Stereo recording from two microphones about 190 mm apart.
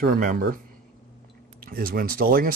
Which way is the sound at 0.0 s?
50° right (ahead or behind).